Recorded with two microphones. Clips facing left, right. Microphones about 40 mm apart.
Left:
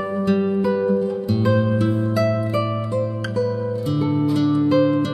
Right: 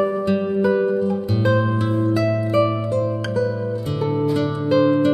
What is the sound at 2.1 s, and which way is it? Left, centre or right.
Music, centre.